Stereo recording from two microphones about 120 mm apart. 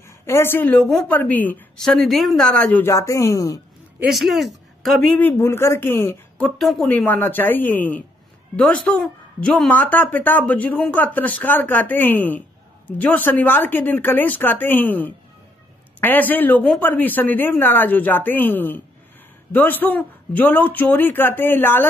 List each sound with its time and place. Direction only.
0.3 s speech: 20° left (ahead or behind)
1.8 s speech: centre (ahead or behind)
2.9 s speech: 25° left (ahead or behind)
4.1 s speech: centre (ahead or behind)
5.2 s speech: 20° left (ahead or behind)
6.6 s speech: centre (ahead or behind)
6.9 s speech: 15° left (ahead or behind)